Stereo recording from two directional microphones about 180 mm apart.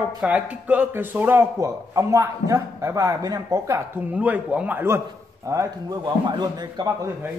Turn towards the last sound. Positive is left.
turn(degrees=-20)  # may be behind; listen again after turning